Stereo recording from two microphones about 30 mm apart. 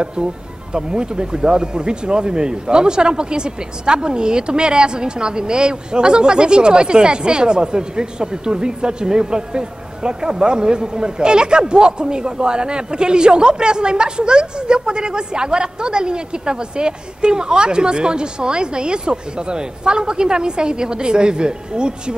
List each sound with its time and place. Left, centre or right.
0.0 s speech: right